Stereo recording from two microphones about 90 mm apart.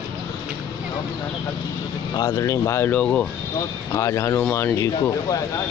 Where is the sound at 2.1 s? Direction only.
45° left (ahead or behind); by 2.9 s 30° left (ahead or behind).